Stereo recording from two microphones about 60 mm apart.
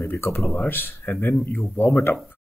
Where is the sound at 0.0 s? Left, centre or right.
Left.